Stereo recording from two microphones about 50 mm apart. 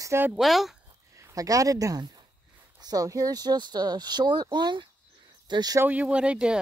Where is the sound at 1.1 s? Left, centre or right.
Right.